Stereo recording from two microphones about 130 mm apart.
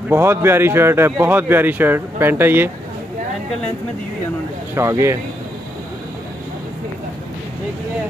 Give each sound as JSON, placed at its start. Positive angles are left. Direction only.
{"t": 0.1, "sound": "speech", "side_deg": -20}
{"t": 4.7, "sound": "speech", "side_deg": -20}